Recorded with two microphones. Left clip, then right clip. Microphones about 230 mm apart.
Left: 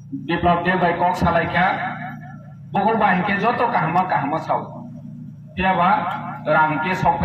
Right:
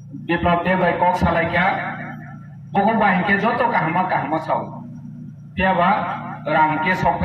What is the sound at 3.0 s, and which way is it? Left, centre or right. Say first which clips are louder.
A man's voice: right 1 dB; left.